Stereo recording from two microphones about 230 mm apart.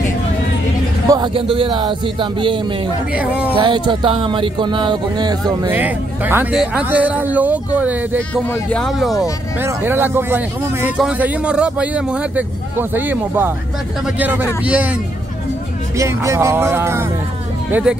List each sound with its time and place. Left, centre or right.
1.0 s speech: centre
9.6 s speech: centre
16.0 s speech: centre